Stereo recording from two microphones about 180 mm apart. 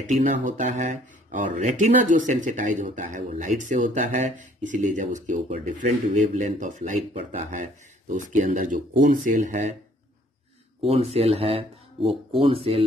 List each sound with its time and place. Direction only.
0.0 s speech: 45° right (ahead or behind)
10.8 s speech: 35° right (ahead or behind)